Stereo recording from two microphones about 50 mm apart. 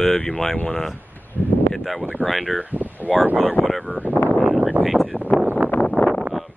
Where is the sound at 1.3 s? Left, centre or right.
Left.